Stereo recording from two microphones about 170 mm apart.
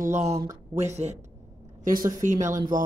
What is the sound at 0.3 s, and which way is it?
Speech, 20° right (ahead or behind).